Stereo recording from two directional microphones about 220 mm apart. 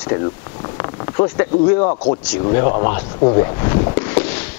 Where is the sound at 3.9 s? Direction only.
10° left (ahead or behind).